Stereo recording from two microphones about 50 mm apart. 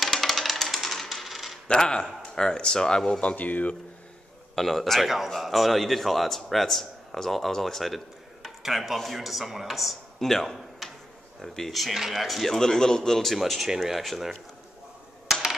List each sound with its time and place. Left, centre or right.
0.0 s coin: centre
1.7 s speech: centre; by 3.7 s left
4.6 s a man's voice: centre
13.4 s a man's voice: centre